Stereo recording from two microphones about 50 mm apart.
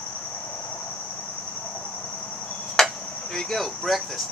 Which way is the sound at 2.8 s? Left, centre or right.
Centre.